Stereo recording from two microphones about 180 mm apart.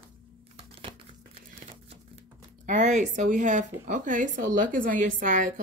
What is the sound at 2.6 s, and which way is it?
Speech, 40° right (ahead or behind).